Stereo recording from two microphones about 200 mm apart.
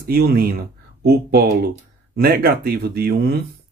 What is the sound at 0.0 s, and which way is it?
Speech, 50° right (ahead or behind).